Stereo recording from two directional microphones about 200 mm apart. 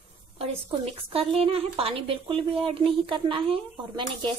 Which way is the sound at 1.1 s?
30° right (ahead or behind).